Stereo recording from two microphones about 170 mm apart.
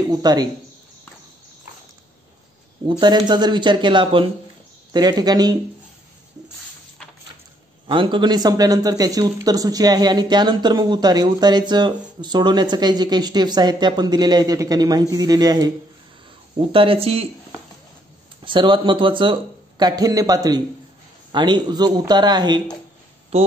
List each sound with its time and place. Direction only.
0.1 s speech: 25° right (ahead or behind)
2.9 s speech: 25° right (ahead or behind)
7.8 s speech: 30° right (ahead or behind)
18.4 s speech: 30° right (ahead or behind)
23.3 s speech: 35° right (ahead or behind)